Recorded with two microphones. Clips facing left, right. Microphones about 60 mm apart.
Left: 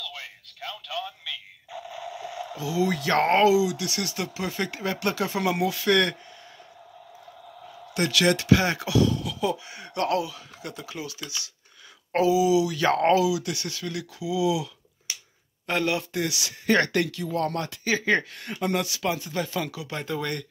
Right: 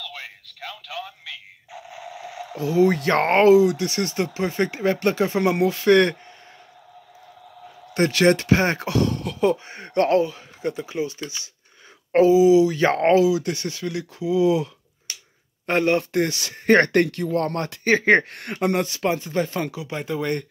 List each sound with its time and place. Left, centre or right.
1.7 s a sound: right
2.5 s speech: right
7.9 s speech: right
14.2 s speech: right
18.8 s speech: right; by 20.3 s centre